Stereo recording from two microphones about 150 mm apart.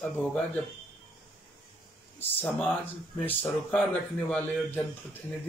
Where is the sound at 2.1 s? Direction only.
10° left (ahead or behind).